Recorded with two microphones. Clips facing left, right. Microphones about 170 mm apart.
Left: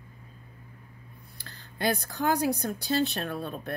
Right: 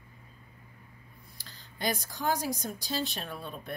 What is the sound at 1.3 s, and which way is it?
Speech, 60° left (ahead or behind).